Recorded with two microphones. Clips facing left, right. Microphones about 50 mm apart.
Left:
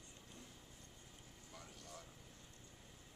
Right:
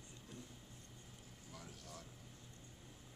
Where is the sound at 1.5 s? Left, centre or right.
Centre.